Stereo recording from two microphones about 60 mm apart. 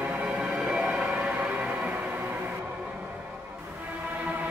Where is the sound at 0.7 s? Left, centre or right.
Centre.